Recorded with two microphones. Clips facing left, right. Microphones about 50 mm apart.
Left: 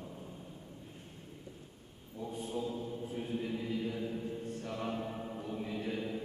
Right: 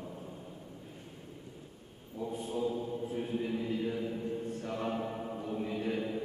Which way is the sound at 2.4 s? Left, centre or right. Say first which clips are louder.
Right 3 dB; centre.